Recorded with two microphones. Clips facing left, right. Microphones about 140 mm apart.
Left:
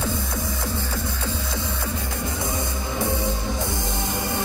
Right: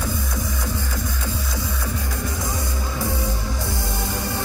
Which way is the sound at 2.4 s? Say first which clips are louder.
Even; 20° left (ahead or behind).